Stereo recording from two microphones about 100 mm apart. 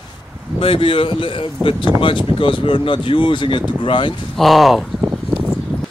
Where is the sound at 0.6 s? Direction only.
60° left (ahead or behind).